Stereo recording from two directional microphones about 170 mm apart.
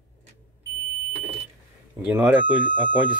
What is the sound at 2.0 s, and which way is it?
Speech, 10° right (ahead or behind).